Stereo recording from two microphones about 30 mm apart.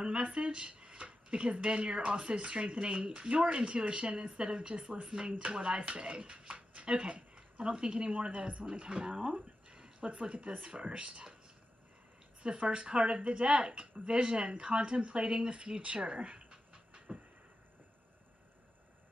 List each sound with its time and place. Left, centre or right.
0.0 s a sound: right
0.4 s speech: right
9.1 s a sound: right
10.0 s speech: right
10.6 s speech: right
12.5 s speech: right
12.8 s speech: right
16.0 s speech: right
16.3 s train: right